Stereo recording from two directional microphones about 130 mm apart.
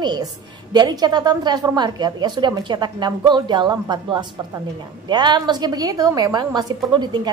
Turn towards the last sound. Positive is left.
turn(degrees=-35)  # may be behind; listen again after turning